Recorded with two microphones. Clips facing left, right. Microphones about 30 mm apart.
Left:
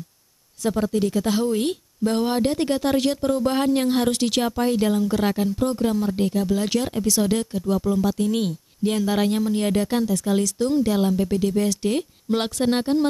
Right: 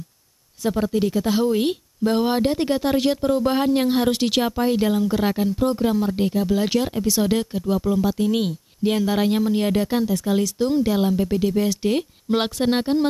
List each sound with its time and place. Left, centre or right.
0.6 s speech: centre